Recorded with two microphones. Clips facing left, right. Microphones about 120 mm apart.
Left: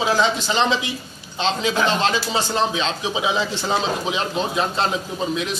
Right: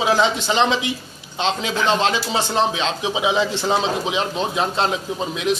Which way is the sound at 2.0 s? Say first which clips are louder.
Right 1 dB; 15° right (ahead or behind).